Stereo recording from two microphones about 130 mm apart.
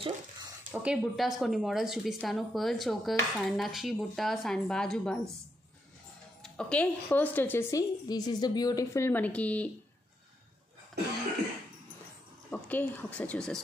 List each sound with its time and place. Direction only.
0.7 s a woman's voice: 5° right (ahead or behind)
6.4 s a woman's voice: 5° left (ahead or behind)
7.7 s a woman's voice: 30° left (ahead or behind); by 9.7 s 10° left (ahead or behind)
12.4 s a woman's voice: 10° left (ahead or behind)